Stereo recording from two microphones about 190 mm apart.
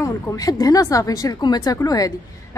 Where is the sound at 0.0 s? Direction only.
20° left (ahead or behind).